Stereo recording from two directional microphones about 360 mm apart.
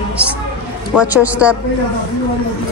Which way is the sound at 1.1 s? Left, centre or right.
Centre.